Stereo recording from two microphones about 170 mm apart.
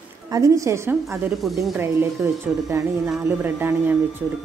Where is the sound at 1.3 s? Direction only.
Centre (ahead or behind).